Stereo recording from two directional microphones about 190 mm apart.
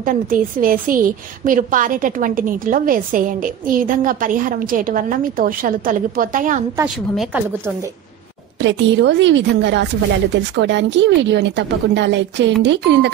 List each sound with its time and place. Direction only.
0.0 s a woman's voice: 45° right (ahead or behind)
6.8 s a woman's voice: 10° right (ahead or behind)
8.5 s a woman's voice: 70° right (ahead or behind)